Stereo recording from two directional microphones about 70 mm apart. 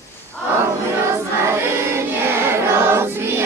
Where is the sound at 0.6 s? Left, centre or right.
Right.